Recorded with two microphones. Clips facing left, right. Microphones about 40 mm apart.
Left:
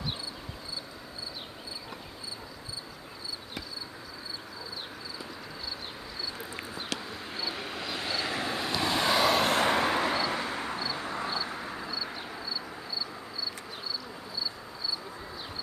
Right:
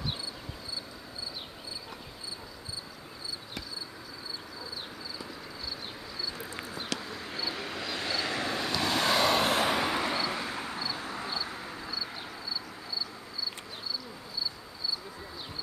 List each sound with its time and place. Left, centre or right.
7.0 s vehicle: centre